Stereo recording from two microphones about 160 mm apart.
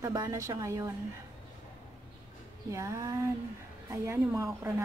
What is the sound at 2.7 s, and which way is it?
A woman's voice, 20° right (ahead or behind).